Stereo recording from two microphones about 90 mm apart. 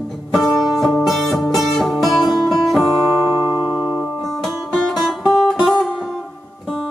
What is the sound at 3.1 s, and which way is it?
Music, 40° left (ahead or behind).